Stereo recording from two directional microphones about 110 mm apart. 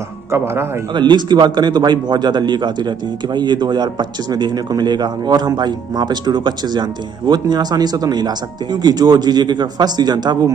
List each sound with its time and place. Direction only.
0.9 s a man's voice: 45° right (ahead or behind)